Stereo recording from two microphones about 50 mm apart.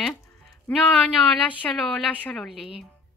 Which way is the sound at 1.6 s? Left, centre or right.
Left.